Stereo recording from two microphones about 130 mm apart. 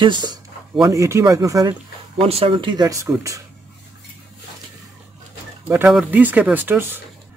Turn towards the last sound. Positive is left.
turn(degrees=-15)  # may be behind; listen again after turning